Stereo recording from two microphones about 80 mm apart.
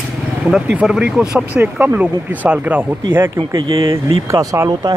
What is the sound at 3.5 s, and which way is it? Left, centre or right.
Speech, right.